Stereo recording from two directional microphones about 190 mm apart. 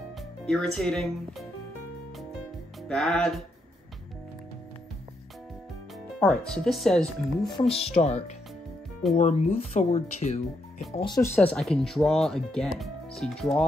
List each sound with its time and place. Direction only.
0.5 s speech: 5° left (ahead or behind)
2.9 s speech: centre (ahead or behind)
6.1 s speech: 5° left (ahead or behind)
7.6 s speech: 30° left (ahead or behind)
11.3 s speech: 5° left (ahead or behind)